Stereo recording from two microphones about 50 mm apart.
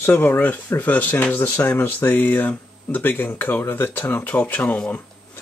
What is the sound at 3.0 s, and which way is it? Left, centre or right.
Speech, left.